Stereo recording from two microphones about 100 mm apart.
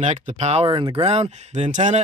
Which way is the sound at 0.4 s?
90° right.